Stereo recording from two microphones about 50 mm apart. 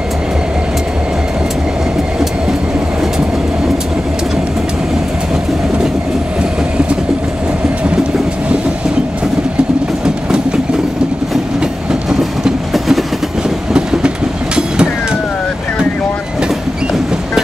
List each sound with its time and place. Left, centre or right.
10.0 s train: centre
11.6 s train: centre
12.7 s train: centre
13.7 s train: centre